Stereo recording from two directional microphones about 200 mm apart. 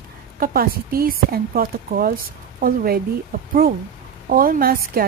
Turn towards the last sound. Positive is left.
turn(degrees=-45)  # may be behind; listen again after turning